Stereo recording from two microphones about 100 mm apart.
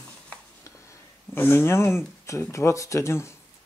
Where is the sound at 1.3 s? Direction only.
20° left (ahead or behind).